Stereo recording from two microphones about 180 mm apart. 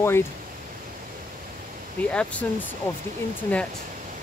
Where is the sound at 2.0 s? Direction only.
5° left (ahead or behind).